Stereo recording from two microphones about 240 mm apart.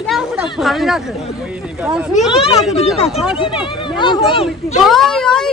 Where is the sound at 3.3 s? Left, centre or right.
Left.